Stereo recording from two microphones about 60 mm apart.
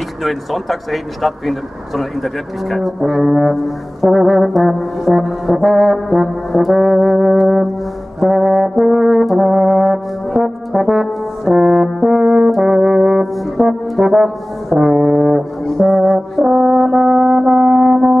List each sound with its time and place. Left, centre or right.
0.2 s speech: centre
8.2 s brass instrument: centre